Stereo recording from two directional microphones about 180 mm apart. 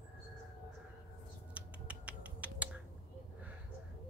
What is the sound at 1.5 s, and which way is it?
Finger snapping, 5° right (ahead or behind).